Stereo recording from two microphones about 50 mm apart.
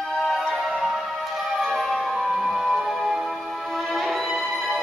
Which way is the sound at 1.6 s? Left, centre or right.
Centre.